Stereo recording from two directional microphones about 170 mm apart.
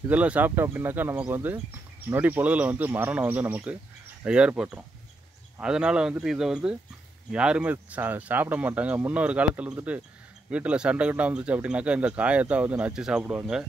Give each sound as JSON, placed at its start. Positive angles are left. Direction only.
{"t": 0.1, "sound": "speech", "side_deg": -10}